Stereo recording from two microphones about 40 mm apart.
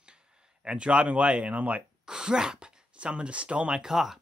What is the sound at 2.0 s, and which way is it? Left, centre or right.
Speech, centre.